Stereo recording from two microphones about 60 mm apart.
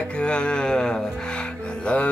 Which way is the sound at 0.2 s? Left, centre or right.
Centre.